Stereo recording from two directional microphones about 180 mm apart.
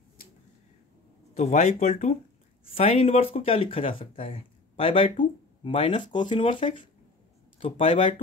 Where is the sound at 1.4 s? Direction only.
40° left (ahead or behind).